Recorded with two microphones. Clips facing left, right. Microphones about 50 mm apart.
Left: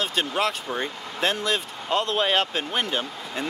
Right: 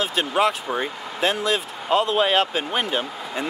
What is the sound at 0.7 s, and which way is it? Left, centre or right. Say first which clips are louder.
Speech: right 3 dB; centre.